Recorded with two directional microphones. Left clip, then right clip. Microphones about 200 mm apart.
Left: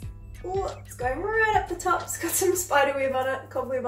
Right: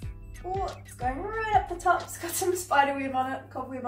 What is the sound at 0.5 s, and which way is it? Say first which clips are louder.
A woman's voice: left 3 dB; centre (ahead or behind).